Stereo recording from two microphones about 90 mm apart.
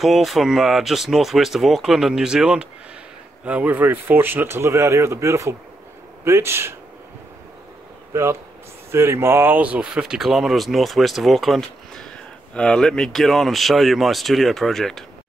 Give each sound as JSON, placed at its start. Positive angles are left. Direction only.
{"t": 0.0, "sound": "speech", "side_deg": 0}
{"t": 8.1, "sound": "speech", "side_deg": -30}